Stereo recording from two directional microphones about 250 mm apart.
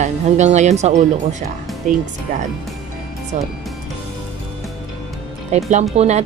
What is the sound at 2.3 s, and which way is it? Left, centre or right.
A child's voice, right.